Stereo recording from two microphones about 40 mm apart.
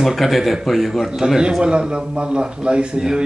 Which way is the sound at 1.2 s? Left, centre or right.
Centre.